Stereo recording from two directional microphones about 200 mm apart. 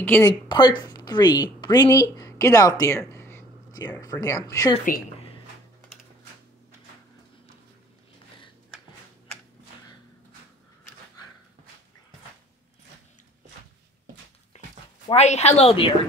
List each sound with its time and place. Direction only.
0.0 s speech: 10° left (ahead or behind)
0.3 s speech: 20° left (ahead or behind)
14.5 s a sound: 35° left (ahead or behind)
15.0 s a woman's voice: 35° left (ahead or behind)